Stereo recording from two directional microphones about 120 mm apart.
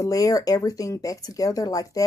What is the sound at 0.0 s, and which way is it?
Speech, 30° left (ahead or behind).